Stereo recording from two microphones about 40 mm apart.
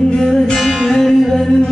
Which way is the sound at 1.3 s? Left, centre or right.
Centre.